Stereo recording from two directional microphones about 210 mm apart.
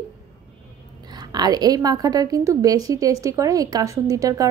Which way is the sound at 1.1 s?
20° right (ahead or behind).